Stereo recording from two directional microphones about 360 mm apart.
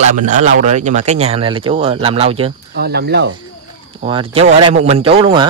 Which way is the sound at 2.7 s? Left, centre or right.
Right.